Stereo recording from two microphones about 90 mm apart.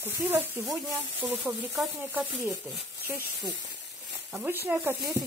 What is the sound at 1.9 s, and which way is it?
Speech, 20° right (ahead or behind).